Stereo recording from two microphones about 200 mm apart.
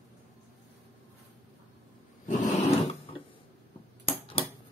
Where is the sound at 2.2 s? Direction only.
30° left (ahead or behind).